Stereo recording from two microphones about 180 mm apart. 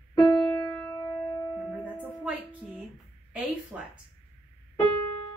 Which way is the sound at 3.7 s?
10° right (ahead or behind).